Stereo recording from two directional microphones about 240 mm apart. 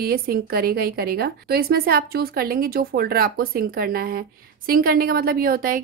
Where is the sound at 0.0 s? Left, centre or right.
Right.